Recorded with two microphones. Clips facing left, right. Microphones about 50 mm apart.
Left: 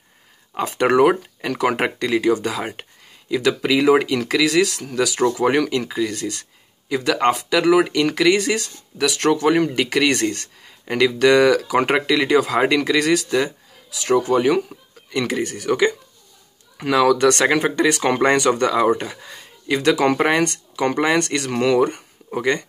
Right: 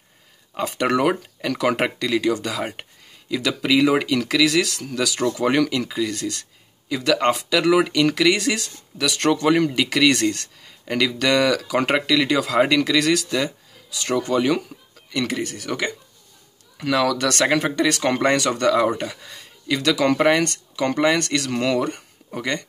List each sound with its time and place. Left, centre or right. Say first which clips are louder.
0.7 s speech: left 5 dB; centre
4.5 s speech: left 3 dB; centre; by 15.9 s left
17.3 s speech: left 3 dB; centre
21.0 s speech: right 1 dB; centre